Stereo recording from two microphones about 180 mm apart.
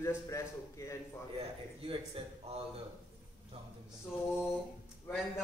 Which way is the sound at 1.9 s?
30° right (ahead or behind).